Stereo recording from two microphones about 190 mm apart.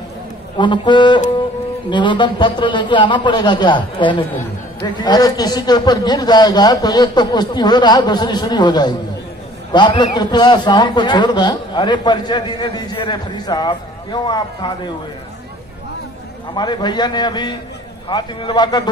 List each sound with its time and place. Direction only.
0.6 s a man's voice: 25° left (ahead or behind)
16.5 s a man's voice: 25° left (ahead or behind)